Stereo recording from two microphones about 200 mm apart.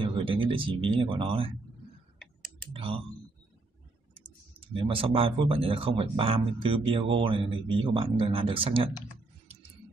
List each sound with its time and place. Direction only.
0.0 s speech: 25° right (ahead or behind)
2.7 s speech: 30° right (ahead or behind)
4.6 s speech: 25° right (ahead or behind)